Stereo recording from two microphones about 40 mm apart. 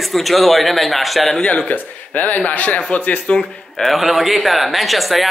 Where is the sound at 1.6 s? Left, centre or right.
Left.